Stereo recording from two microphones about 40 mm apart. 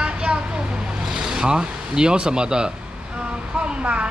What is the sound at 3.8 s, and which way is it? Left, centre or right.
Speech, right.